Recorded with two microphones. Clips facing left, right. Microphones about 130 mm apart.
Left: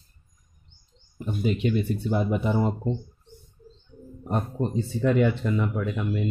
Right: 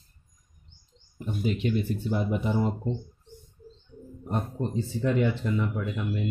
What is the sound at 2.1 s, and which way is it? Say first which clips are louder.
Speech: left 3 dB; 65° left (ahead or behind).